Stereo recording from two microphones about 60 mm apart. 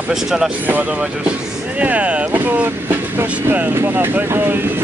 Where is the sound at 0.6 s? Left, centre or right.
Right.